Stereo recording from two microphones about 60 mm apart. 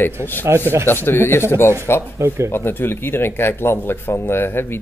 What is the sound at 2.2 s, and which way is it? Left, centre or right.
Speech, right.